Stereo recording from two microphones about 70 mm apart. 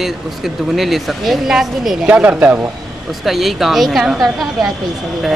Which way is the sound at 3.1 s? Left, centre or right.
Centre.